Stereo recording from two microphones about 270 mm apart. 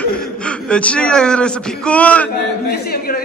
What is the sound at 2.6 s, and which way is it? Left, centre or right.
Speech, left.